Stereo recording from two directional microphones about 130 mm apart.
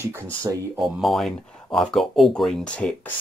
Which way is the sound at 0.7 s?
Centre (ahead or behind).